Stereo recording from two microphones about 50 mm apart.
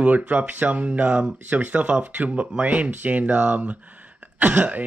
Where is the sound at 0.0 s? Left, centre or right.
Right.